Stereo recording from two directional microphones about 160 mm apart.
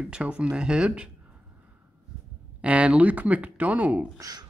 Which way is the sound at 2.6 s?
10° right (ahead or behind).